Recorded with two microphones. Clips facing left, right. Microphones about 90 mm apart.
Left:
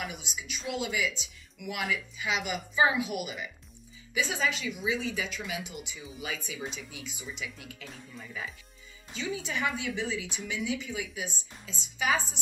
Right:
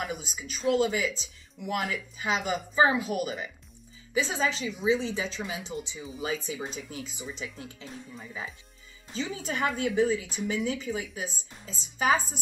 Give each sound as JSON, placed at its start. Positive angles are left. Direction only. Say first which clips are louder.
{"t": 0.0, "sound": "speech", "louder": "right 4 dB", "side_deg": -40}
{"t": 7.8, "sound": "speech", "louder": "right 3 dB", "side_deg": -25}
{"t": 9.1, "sound": "speech", "louder": "right 1 dB", "side_deg": -40}